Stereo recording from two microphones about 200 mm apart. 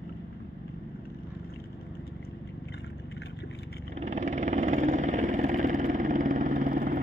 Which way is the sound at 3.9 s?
35° right (ahead or behind).